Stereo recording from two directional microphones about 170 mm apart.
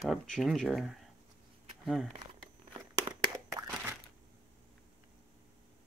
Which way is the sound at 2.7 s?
30° right (ahead or behind).